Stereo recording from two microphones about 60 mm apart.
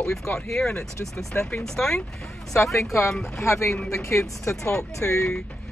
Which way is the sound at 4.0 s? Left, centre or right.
Left.